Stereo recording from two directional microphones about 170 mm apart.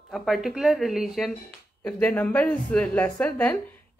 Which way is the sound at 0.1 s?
Centre (ahead or behind).